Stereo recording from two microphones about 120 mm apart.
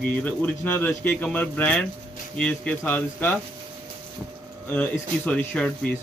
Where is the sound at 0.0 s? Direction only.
15° left (ahead or behind).